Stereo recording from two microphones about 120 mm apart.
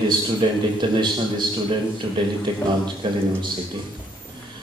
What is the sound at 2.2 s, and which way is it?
A man's voice, 40° right (ahead or behind).